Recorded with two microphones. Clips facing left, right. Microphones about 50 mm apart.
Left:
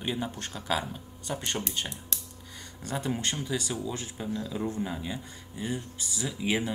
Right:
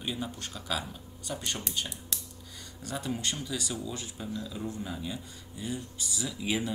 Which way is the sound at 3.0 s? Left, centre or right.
Left.